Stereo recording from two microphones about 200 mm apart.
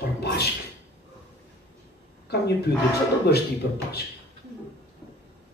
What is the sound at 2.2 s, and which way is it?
Speech, 55° left (ahead or behind).